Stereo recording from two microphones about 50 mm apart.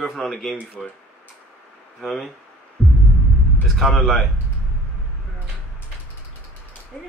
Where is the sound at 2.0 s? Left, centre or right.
Centre.